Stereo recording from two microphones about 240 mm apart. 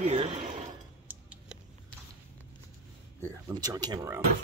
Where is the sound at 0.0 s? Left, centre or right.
Right.